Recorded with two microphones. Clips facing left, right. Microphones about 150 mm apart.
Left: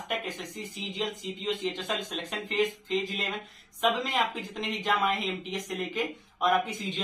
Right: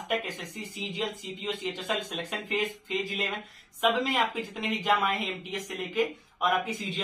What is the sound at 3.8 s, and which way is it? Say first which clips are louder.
Speech: right 1 dB; 5° right (ahead or behind).